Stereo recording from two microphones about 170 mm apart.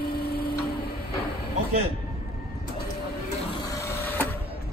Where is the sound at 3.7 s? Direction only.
15° left (ahead or behind).